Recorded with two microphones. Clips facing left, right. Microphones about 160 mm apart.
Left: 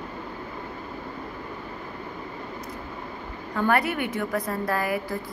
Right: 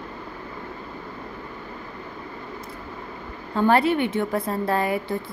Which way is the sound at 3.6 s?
25° right (ahead or behind).